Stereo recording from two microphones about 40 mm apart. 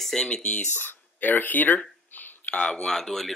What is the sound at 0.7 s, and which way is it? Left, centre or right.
Speech, left.